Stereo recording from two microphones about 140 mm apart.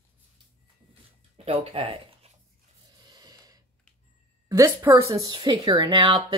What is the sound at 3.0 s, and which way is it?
Snort, 30° right (ahead or behind).